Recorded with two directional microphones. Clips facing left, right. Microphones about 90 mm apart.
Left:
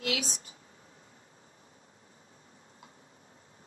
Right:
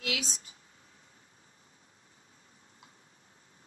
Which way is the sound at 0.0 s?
40° left (ahead or behind).